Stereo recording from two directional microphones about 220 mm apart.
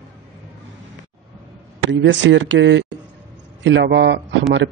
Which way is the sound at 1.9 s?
55° right (ahead or behind).